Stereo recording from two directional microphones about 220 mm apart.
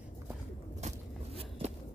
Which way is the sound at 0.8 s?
30° right (ahead or behind).